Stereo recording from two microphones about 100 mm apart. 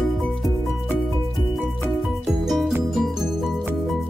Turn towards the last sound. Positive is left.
turn(degrees=0)  # may be behind; listen again after turning